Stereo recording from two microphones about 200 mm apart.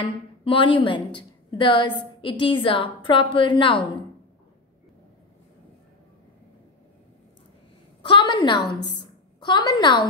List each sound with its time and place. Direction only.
0.0 s a woman's voice: 25° left (ahead or behind)
8.1 s a sound: 20° left (ahead or behind)
8.8 s a woman's voice: 25° left (ahead or behind)